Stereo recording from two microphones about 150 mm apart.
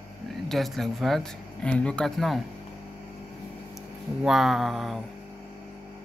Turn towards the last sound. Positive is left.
turn(degrees=0)  # may be behind; listen again after turning